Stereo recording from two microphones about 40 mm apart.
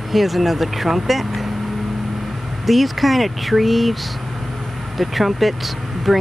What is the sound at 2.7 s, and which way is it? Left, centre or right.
Speech, centre.